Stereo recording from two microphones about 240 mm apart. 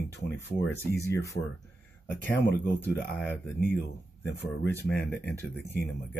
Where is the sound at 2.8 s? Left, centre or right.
Centre.